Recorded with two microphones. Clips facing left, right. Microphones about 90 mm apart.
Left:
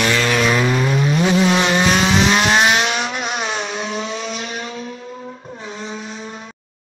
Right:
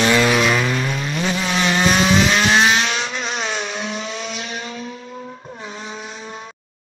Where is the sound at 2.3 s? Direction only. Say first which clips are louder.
Left 1 dB; 15° left (ahead or behind).